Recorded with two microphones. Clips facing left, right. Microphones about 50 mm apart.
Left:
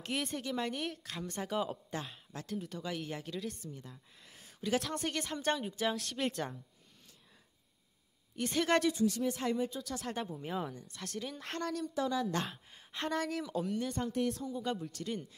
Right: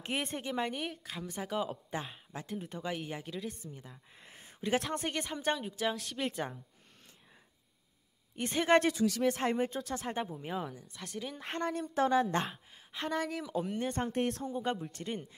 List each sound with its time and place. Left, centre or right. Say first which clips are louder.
0.0 s a woman's voice: right 1 dB; right
0.5 s speech: right 1 dB; centre
1.9 s a woman's voice: right 2 dB; centre
3.0 s speech: even; centre
4.2 s a sound: right 2 dB; right
4.9 s speech: right 1 dB; centre
8.4 s a woman's voice: right 3 dB; right
8.9 s speech: right 2 dB; right
9.4 s speech: right 2 dB; right
10.0 s speech: right 2 dB; centre
11.9 s speech: right 8 dB; right
12.4 s speech: right 2 dB; centre
13.7 s speech: right 1 dB; right
14.4 s a woman's voice: right 2 dB; right